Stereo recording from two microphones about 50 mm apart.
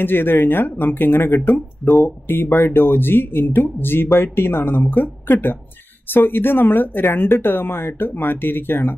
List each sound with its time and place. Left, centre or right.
0.0 s speech: left